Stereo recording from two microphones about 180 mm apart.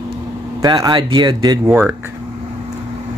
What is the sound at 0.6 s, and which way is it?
Speech, 25° right (ahead or behind).